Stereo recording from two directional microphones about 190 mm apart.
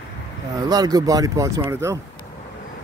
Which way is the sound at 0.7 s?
20° right (ahead or behind).